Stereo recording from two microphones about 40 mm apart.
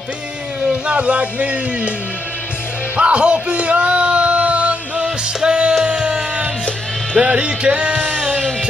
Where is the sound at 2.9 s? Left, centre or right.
Right.